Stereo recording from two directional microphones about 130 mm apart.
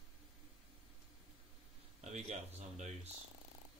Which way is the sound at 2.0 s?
60° right (ahead or behind).